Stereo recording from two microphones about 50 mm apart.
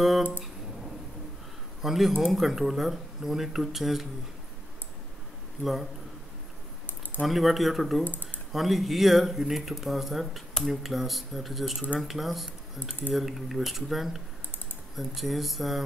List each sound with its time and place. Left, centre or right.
1.8 s speech: centre
5.6 s speech: centre
7.2 s speech: centre
8.0 s speech: left
8.5 s speech: centre